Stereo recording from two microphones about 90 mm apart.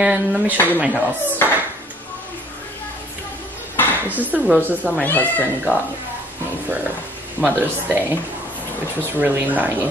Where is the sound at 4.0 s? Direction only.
20° right (ahead or behind).